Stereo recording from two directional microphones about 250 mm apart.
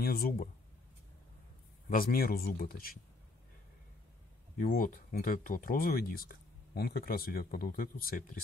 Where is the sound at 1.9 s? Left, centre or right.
Left.